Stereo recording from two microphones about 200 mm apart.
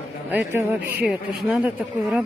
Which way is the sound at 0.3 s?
10° right (ahead or behind).